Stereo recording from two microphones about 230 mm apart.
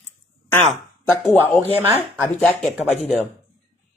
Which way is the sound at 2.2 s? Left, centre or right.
Centre.